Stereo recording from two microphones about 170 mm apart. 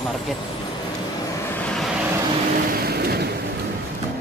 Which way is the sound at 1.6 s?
Centre (ahead or behind).